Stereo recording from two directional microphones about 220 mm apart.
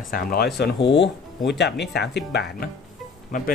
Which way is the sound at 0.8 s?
55° left (ahead or behind).